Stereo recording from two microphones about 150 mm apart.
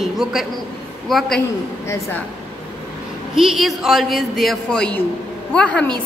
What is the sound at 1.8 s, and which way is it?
Speech, 15° left (ahead or behind).